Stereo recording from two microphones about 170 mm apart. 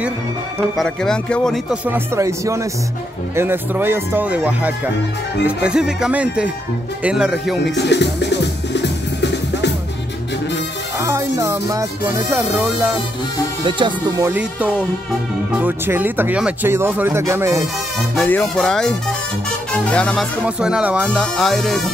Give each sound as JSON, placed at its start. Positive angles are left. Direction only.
{"t": 0.7, "sound": "speech", "side_deg": 5}
{"t": 1.9, "sound": "speech", "side_deg": -15}
{"t": 7.6, "sound": "music", "side_deg": 90}
{"t": 11.0, "sound": "music", "side_deg": -15}
{"t": 13.7, "sound": "speech", "side_deg": -30}
{"t": 14.2, "sound": "speech", "side_deg": -10}
{"t": 18.1, "sound": "speech", "side_deg": 5}
{"t": 20.4, "sound": "speech", "side_deg": -5}